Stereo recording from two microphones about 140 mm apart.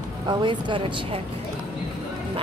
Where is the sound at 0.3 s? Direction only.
35° right (ahead or behind).